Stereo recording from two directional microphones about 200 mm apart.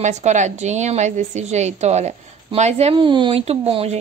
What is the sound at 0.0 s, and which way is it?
A woman's voice, 35° right (ahead or behind).